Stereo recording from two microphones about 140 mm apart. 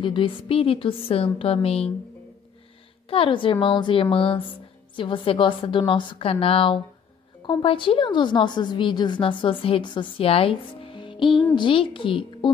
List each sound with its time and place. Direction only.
0.0 s a woman's voice: 40° left (ahead or behind)
3.1 s a woman's voice: 40° left (ahead or behind)